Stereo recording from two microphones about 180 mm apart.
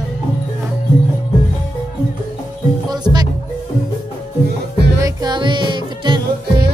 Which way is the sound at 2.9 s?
20° right (ahead or behind).